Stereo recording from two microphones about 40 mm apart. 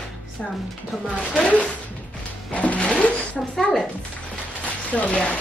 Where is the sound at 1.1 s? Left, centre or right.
Left.